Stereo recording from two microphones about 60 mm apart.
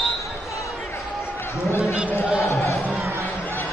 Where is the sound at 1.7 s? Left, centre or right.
Left.